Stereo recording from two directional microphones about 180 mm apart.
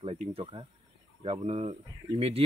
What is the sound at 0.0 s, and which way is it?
Speech, 30° right (ahead or behind).